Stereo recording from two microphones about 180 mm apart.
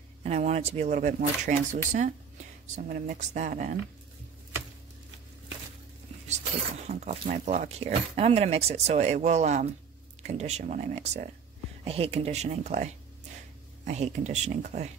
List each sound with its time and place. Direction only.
0.2 s a woman's voice: 40° right (ahead or behind)
6.9 s speech: 40° right (ahead or behind)